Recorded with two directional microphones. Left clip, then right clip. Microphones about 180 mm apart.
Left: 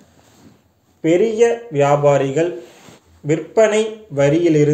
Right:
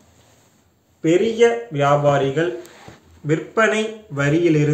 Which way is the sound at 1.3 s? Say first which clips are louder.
Left 1 dB; 20° left (ahead or behind).